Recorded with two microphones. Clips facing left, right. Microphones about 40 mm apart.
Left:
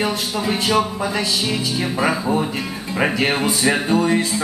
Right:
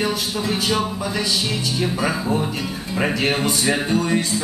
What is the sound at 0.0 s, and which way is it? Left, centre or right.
Music, centre.